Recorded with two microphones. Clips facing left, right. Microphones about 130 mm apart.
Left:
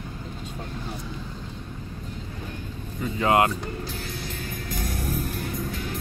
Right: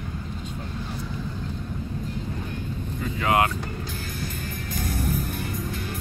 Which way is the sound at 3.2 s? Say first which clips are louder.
Left 2 dB; 25° left (ahead or behind).